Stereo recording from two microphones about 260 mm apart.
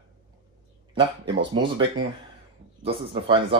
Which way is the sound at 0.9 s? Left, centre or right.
Centre.